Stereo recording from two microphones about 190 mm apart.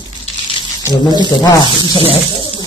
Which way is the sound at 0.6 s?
25° left (ahead or behind).